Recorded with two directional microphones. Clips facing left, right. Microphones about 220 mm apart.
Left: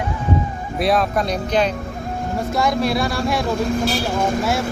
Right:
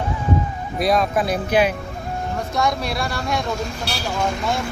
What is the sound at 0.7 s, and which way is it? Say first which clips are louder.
Speech: even; centre (ahead or behind).